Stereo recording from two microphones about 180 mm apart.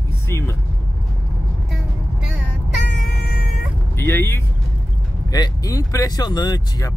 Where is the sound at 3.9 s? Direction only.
10° left (ahead or behind).